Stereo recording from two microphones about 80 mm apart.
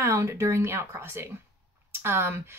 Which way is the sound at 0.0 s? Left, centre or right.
Right.